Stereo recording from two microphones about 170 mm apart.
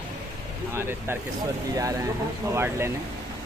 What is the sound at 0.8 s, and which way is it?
Speech, 15° right (ahead or behind).